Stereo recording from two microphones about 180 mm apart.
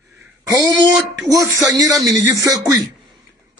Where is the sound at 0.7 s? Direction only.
Centre (ahead or behind).